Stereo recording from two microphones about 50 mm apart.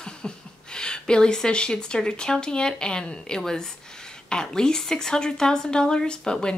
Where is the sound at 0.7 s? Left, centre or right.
Centre.